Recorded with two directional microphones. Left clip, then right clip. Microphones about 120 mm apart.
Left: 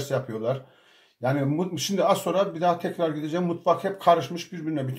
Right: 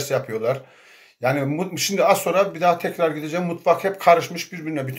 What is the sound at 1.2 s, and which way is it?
Speech, 15° left (ahead or behind).